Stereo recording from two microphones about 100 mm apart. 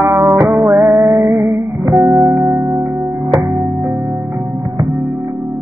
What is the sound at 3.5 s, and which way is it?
Music, 10° right (ahead or behind).